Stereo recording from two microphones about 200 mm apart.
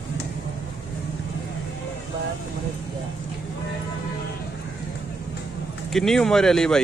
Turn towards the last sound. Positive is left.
turn(degrees=5)  # may be behind; listen again after turning